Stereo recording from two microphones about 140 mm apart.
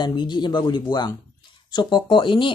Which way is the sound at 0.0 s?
35° left (ahead or behind).